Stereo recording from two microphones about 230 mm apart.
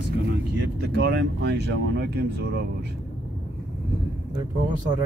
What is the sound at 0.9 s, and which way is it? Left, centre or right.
Speech, right.